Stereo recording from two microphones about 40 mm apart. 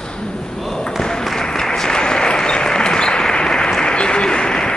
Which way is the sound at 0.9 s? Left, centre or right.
Centre.